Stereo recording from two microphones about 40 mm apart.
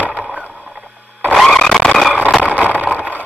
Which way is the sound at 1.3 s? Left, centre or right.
Centre.